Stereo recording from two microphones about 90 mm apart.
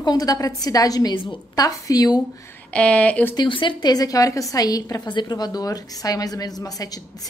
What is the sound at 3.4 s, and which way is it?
A woman's voice, 60° left (ahead or behind).